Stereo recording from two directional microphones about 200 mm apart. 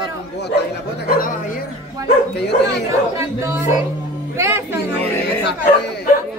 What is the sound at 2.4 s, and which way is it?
Speech, 55° left (ahead or behind).